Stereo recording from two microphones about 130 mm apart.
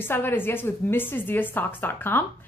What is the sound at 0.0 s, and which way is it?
A woman's voice, 15° left (ahead or behind).